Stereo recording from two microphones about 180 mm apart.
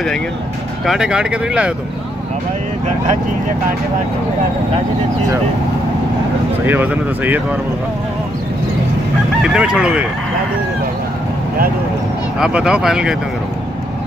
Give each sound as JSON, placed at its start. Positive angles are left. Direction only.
{"t": 0.8, "sound": "speech", "side_deg": -5}
{"t": 6.6, "sound": "speech", "side_deg": -10}
{"t": 9.4, "sound": "speech", "side_deg": -5}
{"t": 12.4, "sound": "speech", "side_deg": -5}